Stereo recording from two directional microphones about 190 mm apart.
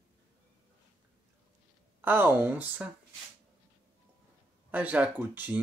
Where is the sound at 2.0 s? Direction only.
10° right (ahead or behind).